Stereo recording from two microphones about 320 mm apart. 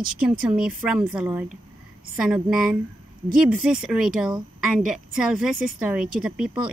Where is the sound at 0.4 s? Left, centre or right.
Centre.